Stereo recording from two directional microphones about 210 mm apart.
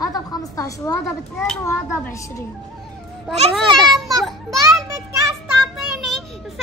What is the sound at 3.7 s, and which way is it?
Children playing, centre (ahead or behind).